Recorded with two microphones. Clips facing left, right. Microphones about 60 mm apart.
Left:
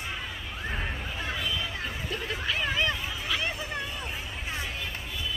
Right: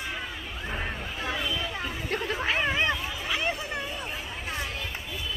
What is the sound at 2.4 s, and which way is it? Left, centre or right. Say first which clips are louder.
Hubbub: right 2 dB; right.